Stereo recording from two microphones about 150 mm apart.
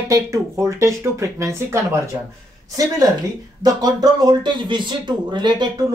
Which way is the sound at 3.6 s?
25° right (ahead or behind).